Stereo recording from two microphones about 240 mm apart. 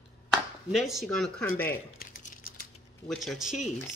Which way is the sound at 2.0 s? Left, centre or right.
Left.